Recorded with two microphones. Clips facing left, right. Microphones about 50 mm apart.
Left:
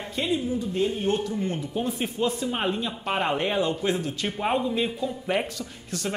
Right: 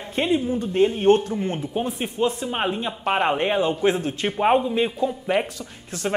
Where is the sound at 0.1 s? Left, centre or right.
Right.